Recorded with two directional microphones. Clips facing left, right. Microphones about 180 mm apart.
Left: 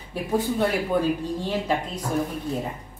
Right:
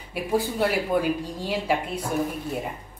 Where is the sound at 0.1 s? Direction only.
10° right (ahead or behind).